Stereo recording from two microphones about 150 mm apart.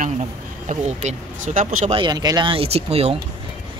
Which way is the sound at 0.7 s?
50° right (ahead or behind).